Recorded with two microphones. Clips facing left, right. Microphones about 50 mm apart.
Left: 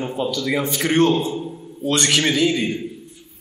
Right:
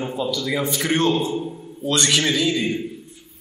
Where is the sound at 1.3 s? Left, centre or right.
Centre.